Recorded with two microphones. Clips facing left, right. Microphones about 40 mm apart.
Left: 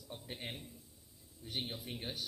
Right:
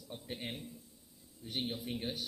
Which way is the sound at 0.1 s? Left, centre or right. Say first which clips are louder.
Right 3 dB; centre.